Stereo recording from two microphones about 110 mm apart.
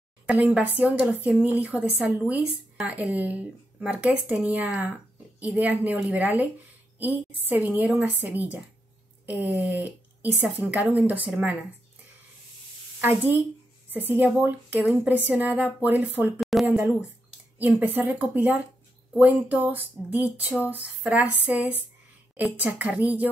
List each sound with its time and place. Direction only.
0.3 s speech: 15° right (ahead or behind)
0.8 s speech: 5° right (ahead or behind)
7.6 s a woman's voice: 15° right (ahead or behind)
13.0 s speech: 15° right (ahead or behind)
16.3 s speech: centre (ahead or behind)